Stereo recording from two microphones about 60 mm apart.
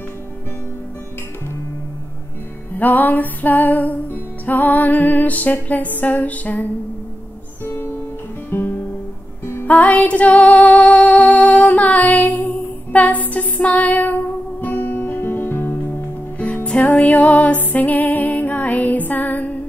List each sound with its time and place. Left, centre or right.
2.8 s music: left
7.6 s music: left
9.7 s music: left
14.6 s guitar: left
16.6 s music: left